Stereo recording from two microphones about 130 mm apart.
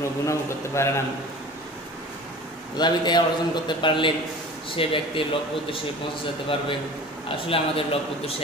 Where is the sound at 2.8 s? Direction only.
35° left (ahead or behind).